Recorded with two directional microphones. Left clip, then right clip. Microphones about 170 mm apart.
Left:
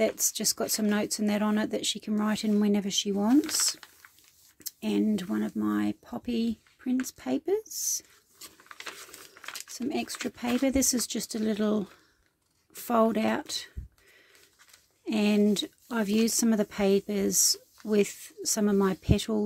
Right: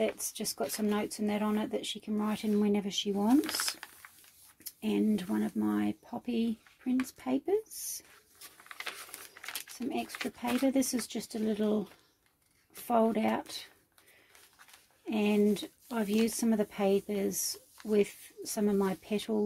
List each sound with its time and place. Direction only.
0.0 s speech: 55° left (ahead or behind)
3.3 s speech: centre (ahead or behind)
4.6 s speech: 35° left (ahead or behind)
8.6 s a sound: 10° right (ahead or behind)
9.8 s speech: 45° left (ahead or behind)
12.8 s speech: 45° left (ahead or behind)
15.0 s speech: 45° left (ahead or behind)